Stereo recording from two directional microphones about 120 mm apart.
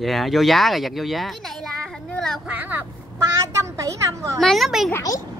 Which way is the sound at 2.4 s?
15° right (ahead or behind).